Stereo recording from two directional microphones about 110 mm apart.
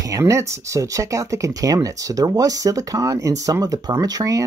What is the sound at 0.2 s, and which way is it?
Speech, 25° right (ahead or behind).